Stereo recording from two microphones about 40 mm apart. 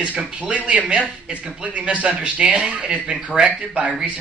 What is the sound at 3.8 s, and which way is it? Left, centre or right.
Speech, right.